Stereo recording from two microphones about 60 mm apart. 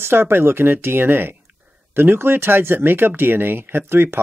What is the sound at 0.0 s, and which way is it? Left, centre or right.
Speech, right.